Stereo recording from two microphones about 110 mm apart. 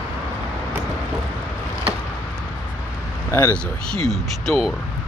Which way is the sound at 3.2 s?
20° left (ahead or behind).